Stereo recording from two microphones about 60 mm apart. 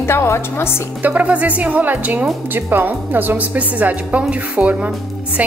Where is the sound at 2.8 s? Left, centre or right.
Right.